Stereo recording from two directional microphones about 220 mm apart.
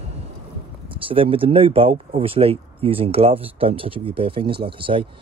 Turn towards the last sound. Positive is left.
turn(degrees=-25)  # may be behind; listen again after turning